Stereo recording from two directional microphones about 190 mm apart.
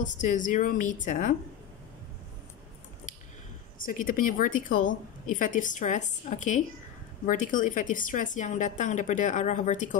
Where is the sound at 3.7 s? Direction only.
45° left (ahead or behind).